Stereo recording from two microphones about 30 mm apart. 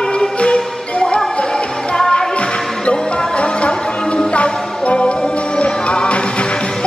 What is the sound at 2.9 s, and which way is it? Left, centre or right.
Music, left.